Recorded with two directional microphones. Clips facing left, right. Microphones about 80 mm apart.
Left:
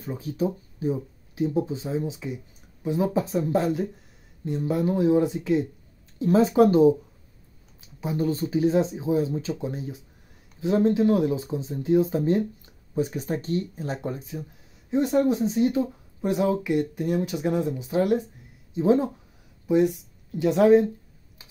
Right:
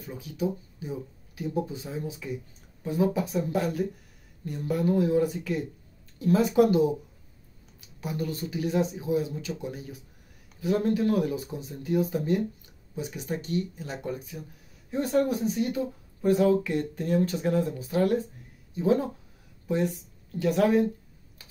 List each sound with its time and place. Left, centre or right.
0.0 s speech: left
20.3 s speech: left